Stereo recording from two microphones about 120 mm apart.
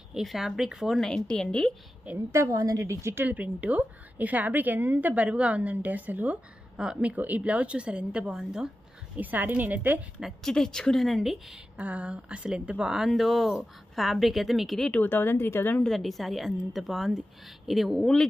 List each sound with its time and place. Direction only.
0.1 s a woman's voice: centre (ahead or behind)
2.1 s a woman's voice: 25° right (ahead or behind)
10.4 s a woman's voice: 5° left (ahead or behind)
14.9 s a woman's voice: 15° left (ahead or behind)
15.8 s a woman's voice: centre (ahead or behind)